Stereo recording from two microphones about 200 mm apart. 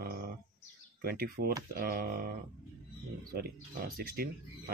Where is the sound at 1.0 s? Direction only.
50° right (ahead or behind).